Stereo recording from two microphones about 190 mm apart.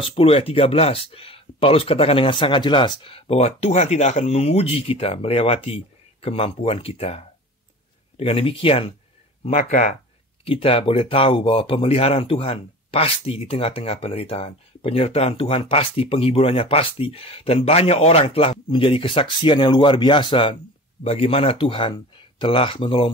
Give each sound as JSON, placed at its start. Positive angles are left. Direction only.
{"t": 0.1, "sound": "speech", "side_deg": 30}
{"t": 9.4, "sound": "speech", "side_deg": 40}
{"t": 10.4, "sound": "speech", "side_deg": 30}